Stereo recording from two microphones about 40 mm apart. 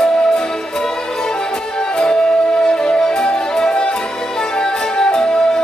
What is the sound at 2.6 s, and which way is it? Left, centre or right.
Music, centre.